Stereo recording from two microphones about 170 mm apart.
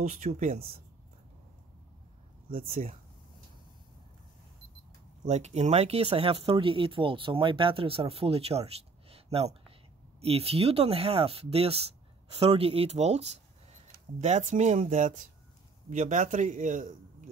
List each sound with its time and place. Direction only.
0.0 s a man's voice: 55° right (ahead or behind)
2.5 s speech: 35° right (ahead or behind)
5.2 s a man's voice: 40° right (ahead or behind)